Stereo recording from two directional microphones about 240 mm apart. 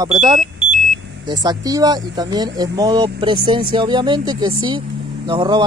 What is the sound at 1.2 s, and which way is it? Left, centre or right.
Speech, centre.